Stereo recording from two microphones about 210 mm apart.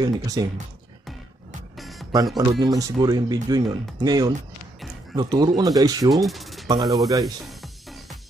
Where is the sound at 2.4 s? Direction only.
15° right (ahead or behind).